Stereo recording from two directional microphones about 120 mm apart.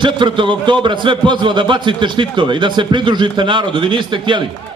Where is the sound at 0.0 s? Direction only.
40° right (ahead or behind).